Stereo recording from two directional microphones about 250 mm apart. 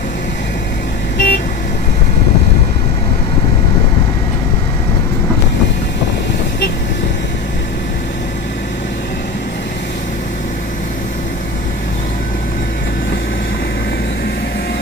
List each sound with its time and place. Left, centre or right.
1.1 s vehicle: left